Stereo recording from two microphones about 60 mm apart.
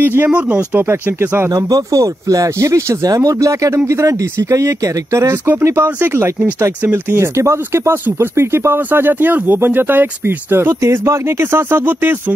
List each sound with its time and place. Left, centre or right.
0.0 s speech: right
0.3 s speech: centre
0.7 s speech: right
1.5 s speech: right
5.9 s speech: right
7.2 s speech: right
10.8 s speech: right